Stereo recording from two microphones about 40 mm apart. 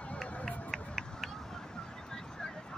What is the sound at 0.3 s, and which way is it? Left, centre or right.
Run, left.